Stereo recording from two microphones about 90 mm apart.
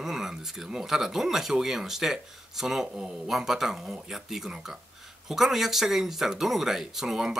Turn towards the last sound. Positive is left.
turn(degrees=-5)  # may be behind; listen again after turning